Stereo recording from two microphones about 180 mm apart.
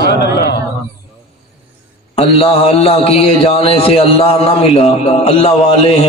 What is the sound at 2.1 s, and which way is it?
A man's voice, 35° left (ahead or behind).